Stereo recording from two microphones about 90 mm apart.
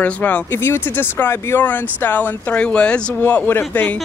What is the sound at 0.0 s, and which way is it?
Speech, 15° left (ahead or behind).